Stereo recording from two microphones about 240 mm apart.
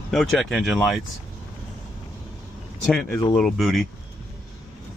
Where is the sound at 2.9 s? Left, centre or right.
Centre.